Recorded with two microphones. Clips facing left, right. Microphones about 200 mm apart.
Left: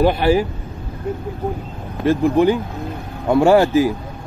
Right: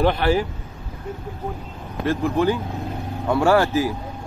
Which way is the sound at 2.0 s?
15° left (ahead or behind).